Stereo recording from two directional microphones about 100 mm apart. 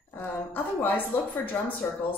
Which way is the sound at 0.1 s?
20° left (ahead or behind).